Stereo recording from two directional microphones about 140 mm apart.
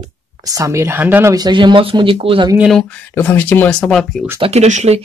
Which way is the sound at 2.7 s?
10° left (ahead or behind).